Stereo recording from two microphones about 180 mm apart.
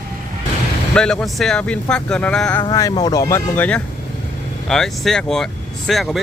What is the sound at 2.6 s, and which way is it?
Speech, 20° left (ahead or behind).